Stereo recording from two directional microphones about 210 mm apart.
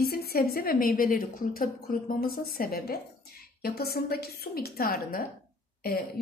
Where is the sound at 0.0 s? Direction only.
45° left (ahead or behind).